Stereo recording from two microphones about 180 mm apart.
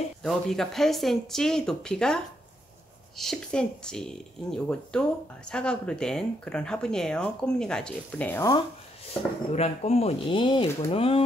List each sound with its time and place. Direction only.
0.2 s speech: centre (ahead or behind)
9.6 s speech: 35° left (ahead or behind)